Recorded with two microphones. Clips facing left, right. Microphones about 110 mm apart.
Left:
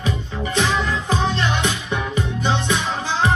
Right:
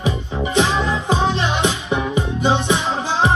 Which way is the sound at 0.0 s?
20° right (ahead or behind).